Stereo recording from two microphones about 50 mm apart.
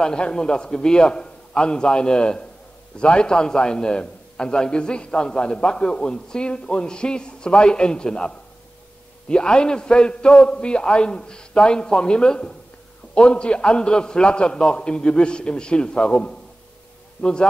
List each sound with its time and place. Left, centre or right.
0.0 s a man's voice: centre